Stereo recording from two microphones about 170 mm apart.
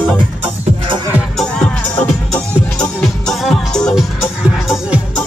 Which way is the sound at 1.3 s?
5° left (ahead or behind).